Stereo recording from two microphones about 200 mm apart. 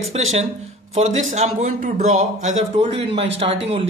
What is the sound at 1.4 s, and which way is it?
Speech, 35° right (ahead or behind).